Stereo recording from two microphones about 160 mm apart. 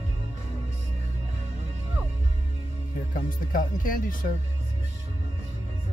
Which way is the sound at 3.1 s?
60° left (ahead or behind).